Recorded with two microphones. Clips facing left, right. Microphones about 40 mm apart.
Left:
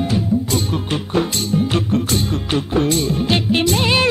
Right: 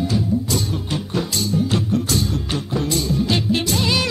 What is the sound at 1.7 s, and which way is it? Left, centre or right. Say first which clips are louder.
Music: left 2 dB; left.